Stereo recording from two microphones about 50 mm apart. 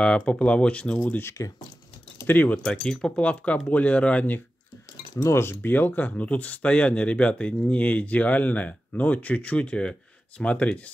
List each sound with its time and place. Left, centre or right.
0.0 s speech: centre
0.9 s speech: left
2.2 s speech: left
2.5 s speech: centre
3.2 s speech: left
5.2 s speech: left
5.6 s speech: left